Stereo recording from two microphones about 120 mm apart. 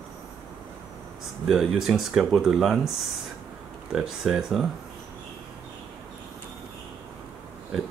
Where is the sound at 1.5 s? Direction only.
Centre (ahead or behind).